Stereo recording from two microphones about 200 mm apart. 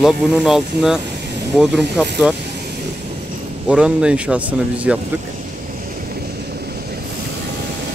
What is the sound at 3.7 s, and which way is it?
Speech, 5° right (ahead or behind).